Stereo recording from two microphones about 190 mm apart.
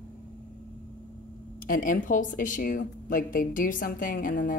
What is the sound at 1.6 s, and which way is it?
A woman's voice, 45° left (ahead or behind).